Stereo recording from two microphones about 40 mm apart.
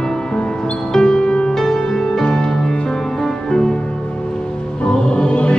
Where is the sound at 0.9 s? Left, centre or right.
Centre.